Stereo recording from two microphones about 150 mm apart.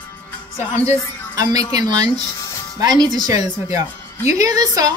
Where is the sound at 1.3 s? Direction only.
25° right (ahead or behind).